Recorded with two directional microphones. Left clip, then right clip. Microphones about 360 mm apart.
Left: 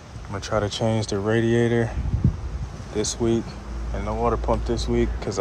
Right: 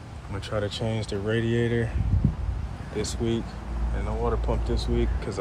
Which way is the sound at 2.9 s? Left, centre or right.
Centre.